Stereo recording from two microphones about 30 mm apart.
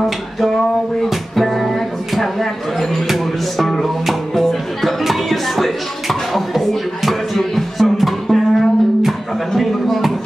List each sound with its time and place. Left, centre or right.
1.3 s music: centre
3.1 s music: centre
9.6 s a sound: centre